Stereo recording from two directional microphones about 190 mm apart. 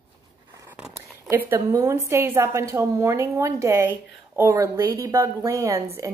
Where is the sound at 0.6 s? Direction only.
10° right (ahead or behind).